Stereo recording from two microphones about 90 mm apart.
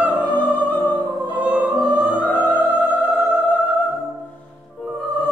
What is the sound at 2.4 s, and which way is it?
Music, 20° left (ahead or behind).